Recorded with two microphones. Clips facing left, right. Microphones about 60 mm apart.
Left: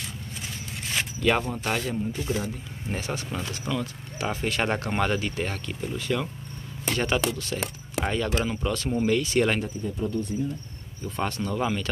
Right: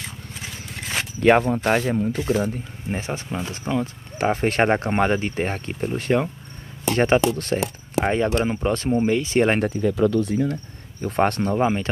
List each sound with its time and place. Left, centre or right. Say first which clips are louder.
0.9 s speech: right 7 dB; right
2.0 s speech: right 7 dB; right
2.9 s speech: right 4 dB; right
5.8 s speech: right 7 dB; right
7.0 s speech: right 8 dB; right
7.3 s speech: right 8 dB; right
8.0 s speech: right 6 dB; right
9.6 s speech: right 10 dB; right
11.5 s speech: right 6 dB; right